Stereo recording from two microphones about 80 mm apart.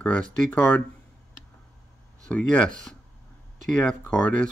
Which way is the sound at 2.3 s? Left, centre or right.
Centre.